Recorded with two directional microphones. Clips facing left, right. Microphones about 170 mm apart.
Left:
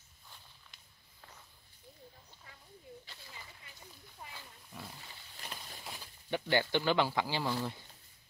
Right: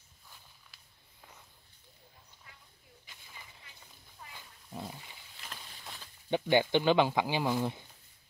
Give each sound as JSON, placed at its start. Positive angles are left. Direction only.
{"t": 4.3, "sound": "roaring cats", "side_deg": -20}
{"t": 5.5, "sound": "a sound", "side_deg": 10}
{"t": 6.3, "sound": "speech", "side_deg": -15}